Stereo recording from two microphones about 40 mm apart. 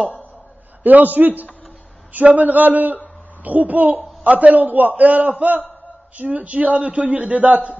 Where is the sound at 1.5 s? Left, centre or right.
Left.